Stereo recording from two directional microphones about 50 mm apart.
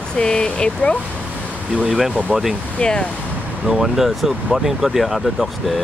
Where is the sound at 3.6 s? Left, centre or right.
Centre.